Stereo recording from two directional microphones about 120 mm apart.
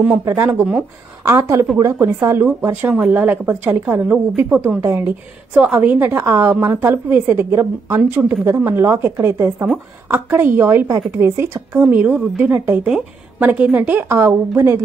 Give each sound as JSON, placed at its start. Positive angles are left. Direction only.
{"t": 0.2, "sound": "a woman's voice", "side_deg": -25}